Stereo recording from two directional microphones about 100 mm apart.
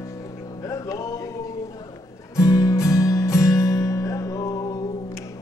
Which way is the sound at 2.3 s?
35° left (ahead or behind).